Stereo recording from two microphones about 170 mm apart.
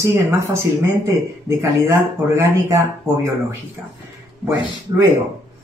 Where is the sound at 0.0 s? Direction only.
15° right (ahead or behind).